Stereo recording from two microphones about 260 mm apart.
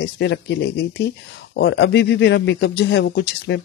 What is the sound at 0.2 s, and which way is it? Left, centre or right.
Speech, left.